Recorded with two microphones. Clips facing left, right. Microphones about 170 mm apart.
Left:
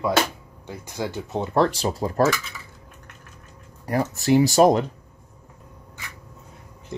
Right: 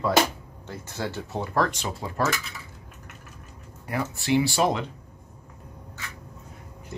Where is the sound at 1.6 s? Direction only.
35° left (ahead or behind).